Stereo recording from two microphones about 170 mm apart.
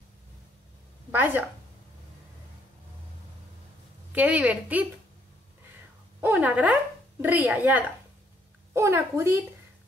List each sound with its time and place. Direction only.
1.1 s a woman's voice: 10° right (ahead or behind)
4.1 s a woman's voice: 10° right (ahead or behind)
6.2 s a woman's voice: 10° right (ahead or behind)